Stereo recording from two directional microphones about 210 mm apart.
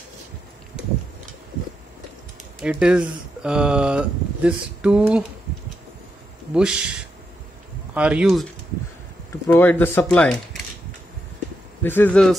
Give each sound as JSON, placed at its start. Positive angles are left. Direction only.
{"t": 2.6, "sound": "speech", "side_deg": -5}
{"t": 6.5, "sound": "speech", "side_deg": -5}
{"t": 9.3, "sound": "speech", "side_deg": 10}
{"t": 11.8, "sound": "speech", "side_deg": 10}